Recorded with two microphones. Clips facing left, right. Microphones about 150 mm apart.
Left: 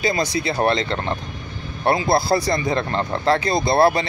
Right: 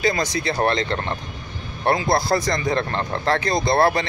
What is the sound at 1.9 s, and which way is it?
Speech, 25° left (ahead or behind).